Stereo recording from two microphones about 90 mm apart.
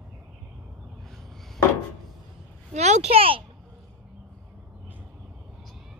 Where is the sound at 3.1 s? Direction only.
90° right.